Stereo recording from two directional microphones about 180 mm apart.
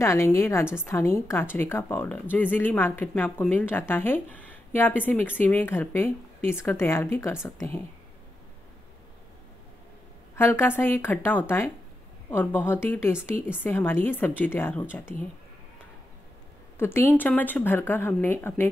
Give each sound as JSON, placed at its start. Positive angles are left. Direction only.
{"t": 0.0, "sound": "speech", "side_deg": 15}
{"t": 10.3, "sound": "a woman's voice", "side_deg": 10}
{"t": 16.7, "sound": "a woman's voice", "side_deg": 15}